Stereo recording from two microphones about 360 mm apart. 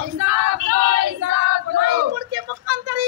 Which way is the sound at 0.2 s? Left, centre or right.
Right.